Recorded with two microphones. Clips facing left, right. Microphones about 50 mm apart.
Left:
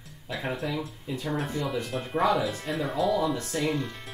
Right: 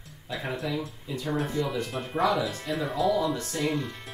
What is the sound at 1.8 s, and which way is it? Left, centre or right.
Speech, centre.